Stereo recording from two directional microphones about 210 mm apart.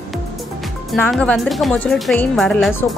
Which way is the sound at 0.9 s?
5° left (ahead or behind).